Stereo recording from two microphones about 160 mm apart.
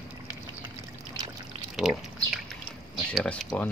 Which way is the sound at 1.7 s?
Centre (ahead or behind).